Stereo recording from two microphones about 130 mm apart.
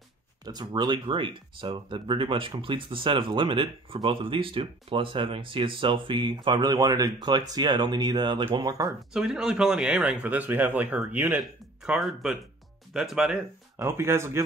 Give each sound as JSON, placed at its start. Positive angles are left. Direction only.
{"t": 0.5, "sound": "speech", "side_deg": -35}
{"t": 9.1, "sound": "speech", "side_deg": -5}
{"t": 13.7, "sound": "speech", "side_deg": -20}